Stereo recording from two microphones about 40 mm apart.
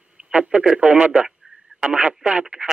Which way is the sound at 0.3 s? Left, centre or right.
Right.